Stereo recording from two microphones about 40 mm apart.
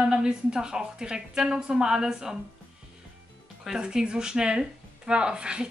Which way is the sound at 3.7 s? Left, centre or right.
Centre.